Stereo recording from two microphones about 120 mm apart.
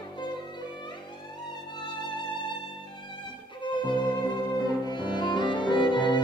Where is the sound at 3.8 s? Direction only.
40° left (ahead or behind).